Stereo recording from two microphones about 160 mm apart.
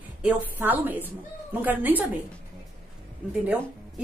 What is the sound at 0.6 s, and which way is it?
Speech, 10° right (ahead or behind).